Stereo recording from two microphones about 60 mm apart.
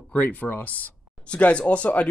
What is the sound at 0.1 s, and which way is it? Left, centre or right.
Speech, left.